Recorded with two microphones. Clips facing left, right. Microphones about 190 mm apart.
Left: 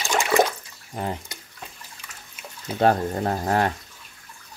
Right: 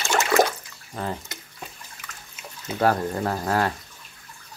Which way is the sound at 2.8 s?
25° left (ahead or behind).